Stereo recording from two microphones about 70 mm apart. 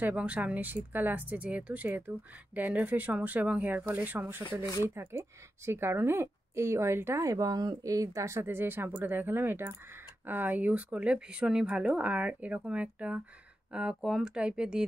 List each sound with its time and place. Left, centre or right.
0.0 s speech: centre
4.8 s speech: right
7.3 s speech: right; by 14.9 s centre